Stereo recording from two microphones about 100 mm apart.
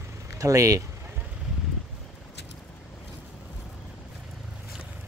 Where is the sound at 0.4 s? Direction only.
35° right (ahead or behind).